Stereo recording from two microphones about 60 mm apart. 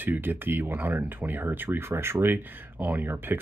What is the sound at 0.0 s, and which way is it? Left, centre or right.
Speech, right.